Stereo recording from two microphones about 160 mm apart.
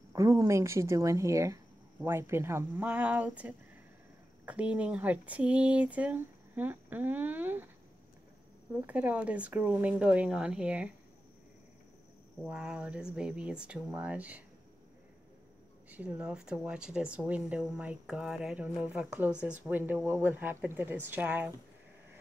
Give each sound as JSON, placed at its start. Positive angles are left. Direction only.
{"t": 0.1, "sound": "speech", "side_deg": -20}
{"t": 8.8, "sound": "speech", "side_deg": -10}
{"t": 12.4, "sound": "speech", "side_deg": -5}
{"t": 15.9, "sound": "speech", "side_deg": -10}